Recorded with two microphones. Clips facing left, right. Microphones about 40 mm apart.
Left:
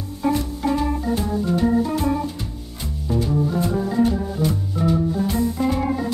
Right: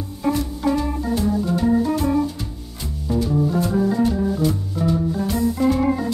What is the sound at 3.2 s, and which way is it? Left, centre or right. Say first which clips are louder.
Music: right 1 dB; centre.